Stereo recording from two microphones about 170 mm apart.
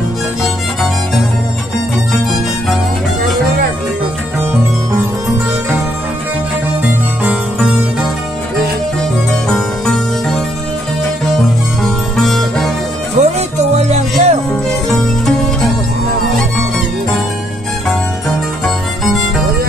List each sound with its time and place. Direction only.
6.8 s music: 5° right (ahead or behind)
9.5 s music: 5° left (ahead or behind)
13.2 s music: 40° right (ahead or behind)
14.5 s music: 5° left (ahead or behind)